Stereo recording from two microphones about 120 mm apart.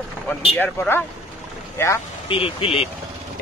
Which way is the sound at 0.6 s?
20° left (ahead or behind).